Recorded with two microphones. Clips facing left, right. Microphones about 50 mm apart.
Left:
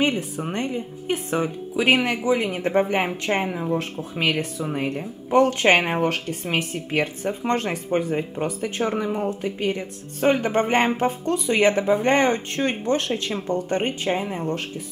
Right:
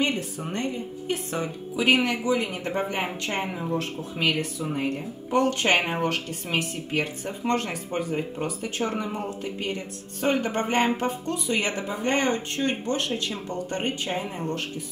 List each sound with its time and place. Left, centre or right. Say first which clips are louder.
0.0 s speech: left 4 dB; centre
3.4 s speech: left 4 dB; centre
3.7 s speech: left 3 dB; left
8.9 s speech: left 5 dB; centre